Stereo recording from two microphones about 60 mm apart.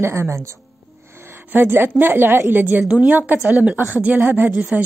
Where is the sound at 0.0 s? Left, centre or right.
Right.